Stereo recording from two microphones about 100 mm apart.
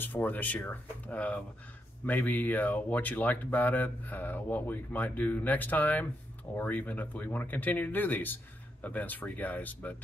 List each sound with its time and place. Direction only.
0.0 s speech: 20° left (ahead or behind)